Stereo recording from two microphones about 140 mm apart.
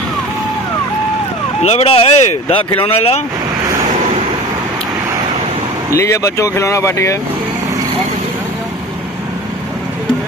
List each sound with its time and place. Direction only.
1.6 s speech: 45° left (ahead or behind)
5.9 s speech: 20° left (ahead or behind)